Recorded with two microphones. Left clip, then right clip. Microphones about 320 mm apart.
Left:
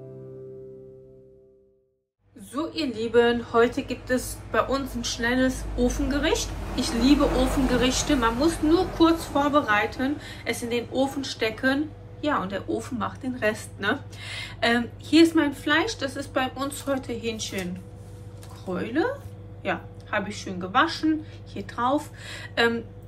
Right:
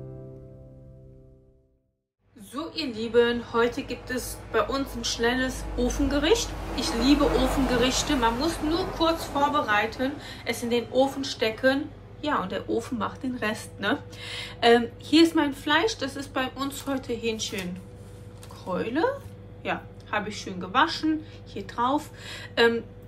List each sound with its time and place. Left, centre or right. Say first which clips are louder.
2.5 s a woman's voice: left 3 dB; centre
18.7 s a woman's voice: right 1 dB; centre